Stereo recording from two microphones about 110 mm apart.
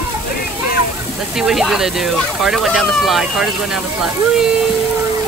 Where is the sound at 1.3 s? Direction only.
5° right (ahead or behind).